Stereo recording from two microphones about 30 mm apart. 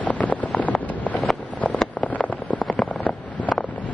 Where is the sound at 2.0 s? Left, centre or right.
Left.